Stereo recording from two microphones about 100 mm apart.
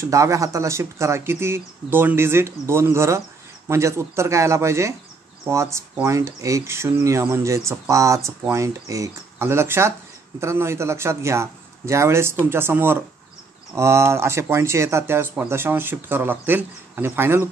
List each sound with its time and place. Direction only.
0.0 s speech: 30° right (ahead or behind)